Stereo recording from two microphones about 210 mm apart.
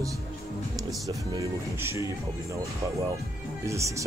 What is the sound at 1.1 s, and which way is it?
Speech, 15° right (ahead or behind).